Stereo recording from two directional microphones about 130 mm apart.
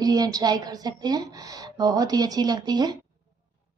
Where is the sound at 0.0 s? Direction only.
30° right (ahead or behind).